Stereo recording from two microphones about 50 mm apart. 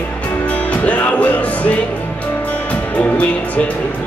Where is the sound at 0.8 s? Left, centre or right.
Left.